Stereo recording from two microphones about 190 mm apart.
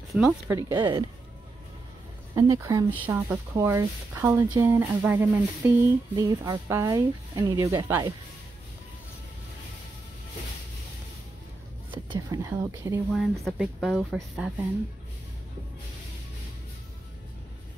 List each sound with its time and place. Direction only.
0.1 s speech: 5° right (ahead or behind)
0.5 s speech: 20° right (ahead or behind)
2.3 s speech: 20° right (ahead or behind)
11.9 s speech: 20° right (ahead or behind)
13.1 s speech: centre (ahead or behind)